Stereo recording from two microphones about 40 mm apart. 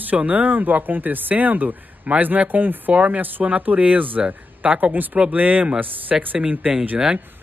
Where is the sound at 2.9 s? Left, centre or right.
Right.